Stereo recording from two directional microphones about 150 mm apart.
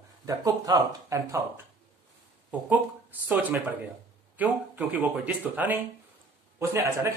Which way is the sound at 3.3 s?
10° right (ahead or behind).